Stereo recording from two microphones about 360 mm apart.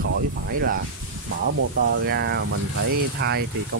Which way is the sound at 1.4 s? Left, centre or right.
Right.